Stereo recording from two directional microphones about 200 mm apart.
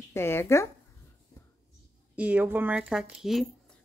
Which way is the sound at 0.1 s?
15° left (ahead or behind).